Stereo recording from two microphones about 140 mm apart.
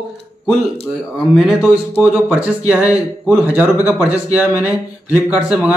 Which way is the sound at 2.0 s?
10° right (ahead or behind).